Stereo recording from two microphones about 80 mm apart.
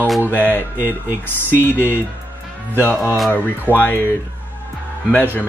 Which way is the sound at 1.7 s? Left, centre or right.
Left.